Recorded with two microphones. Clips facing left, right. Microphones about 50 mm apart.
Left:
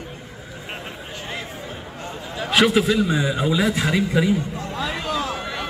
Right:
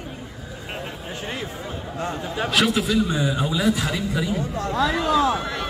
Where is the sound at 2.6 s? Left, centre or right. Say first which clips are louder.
Left 4 dB; left.